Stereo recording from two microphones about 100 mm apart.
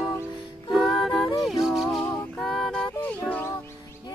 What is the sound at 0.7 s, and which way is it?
Music, centre (ahead or behind).